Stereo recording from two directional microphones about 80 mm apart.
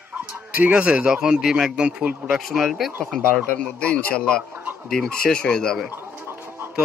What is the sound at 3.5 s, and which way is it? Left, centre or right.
Speech, centre.